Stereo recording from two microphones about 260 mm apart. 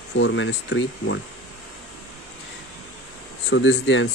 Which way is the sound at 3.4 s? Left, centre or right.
Left.